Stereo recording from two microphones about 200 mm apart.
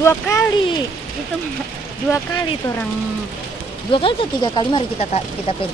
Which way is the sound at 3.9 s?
25° left (ahead or behind).